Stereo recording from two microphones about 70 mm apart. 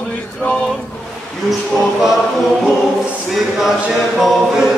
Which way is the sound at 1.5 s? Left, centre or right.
Centre.